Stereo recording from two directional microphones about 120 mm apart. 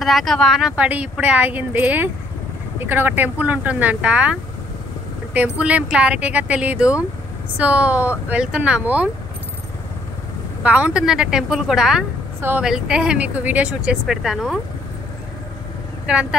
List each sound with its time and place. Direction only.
0.0 s a woman's voice: centre (ahead or behind)
10.6 s a woman's voice: 10° right (ahead or behind)
12.4 s speech: 20° right (ahead or behind)
12.6 s a woman's voice: 5° right (ahead or behind)
16.1 s a woman's voice: 5° right (ahead or behind)